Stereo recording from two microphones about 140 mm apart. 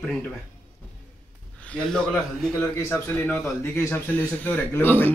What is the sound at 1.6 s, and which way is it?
Speech, 5° left (ahead or behind).